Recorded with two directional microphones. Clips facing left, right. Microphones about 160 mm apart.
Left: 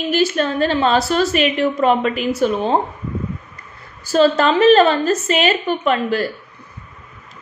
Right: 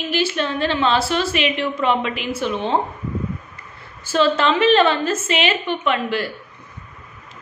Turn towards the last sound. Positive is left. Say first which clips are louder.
# left 3 dB
turn(degrees=40)  # may be behind; listen again after turning